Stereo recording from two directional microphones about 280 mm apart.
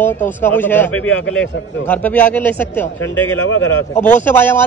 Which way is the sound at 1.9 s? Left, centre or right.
Centre.